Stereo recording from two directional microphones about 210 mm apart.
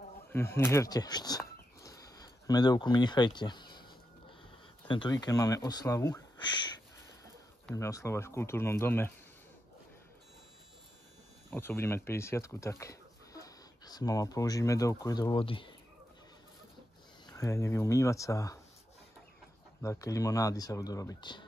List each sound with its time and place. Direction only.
0.3 s speech: 10° left (ahead or behind)
1.8 s a sound: 15° left (ahead or behind)
4.8 s speech: 20° left (ahead or behind)
7.7 s speech: 15° left (ahead or behind)
11.5 s speech: 10° left (ahead or behind)
17.3 s speech: 15° left (ahead or behind)
19.8 s speech: 15° left (ahead or behind)